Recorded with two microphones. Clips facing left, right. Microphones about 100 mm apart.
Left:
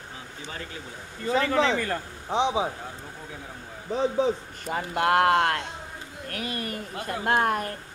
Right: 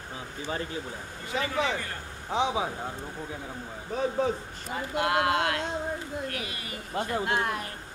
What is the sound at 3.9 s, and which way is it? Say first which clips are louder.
Speech: left 3 dB; 25° left (ahead or behind).